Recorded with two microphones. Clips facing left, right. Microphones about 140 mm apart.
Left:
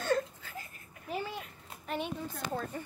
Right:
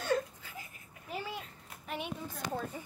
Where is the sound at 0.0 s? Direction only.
10° right (ahead or behind).